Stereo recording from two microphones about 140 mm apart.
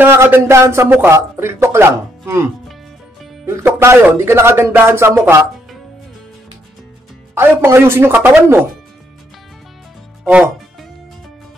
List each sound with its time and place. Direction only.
0.0 s speech: 15° right (ahead or behind)
3.4 s speech: 20° right (ahead or behind)
7.3 s speech: 20° right (ahead or behind)
10.2 s speech: 15° right (ahead or behind)